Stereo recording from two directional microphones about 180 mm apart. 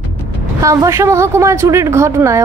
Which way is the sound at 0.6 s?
15° right (ahead or behind).